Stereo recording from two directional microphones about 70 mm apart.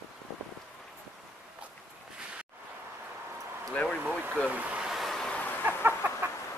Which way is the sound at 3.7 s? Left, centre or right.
Centre.